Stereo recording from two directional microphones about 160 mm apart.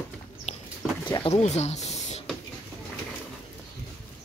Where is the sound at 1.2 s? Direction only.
45° left (ahead or behind).